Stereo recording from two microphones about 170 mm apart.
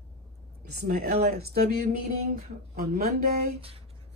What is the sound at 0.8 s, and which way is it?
Speech, 40° right (ahead or behind).